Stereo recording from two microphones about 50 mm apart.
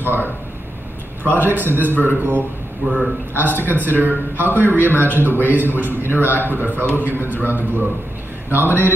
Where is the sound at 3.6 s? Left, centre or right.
Right.